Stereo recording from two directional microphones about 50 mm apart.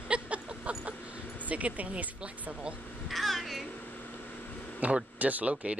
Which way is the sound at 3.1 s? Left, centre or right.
Centre.